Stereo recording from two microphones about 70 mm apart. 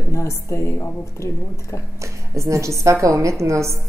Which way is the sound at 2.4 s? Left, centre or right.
Right.